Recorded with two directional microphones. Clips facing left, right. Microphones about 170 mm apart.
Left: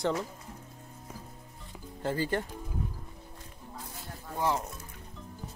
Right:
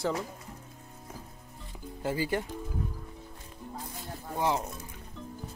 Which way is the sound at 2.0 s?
10° right (ahead or behind).